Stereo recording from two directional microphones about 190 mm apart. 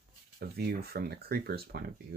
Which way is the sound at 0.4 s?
55° right (ahead or behind).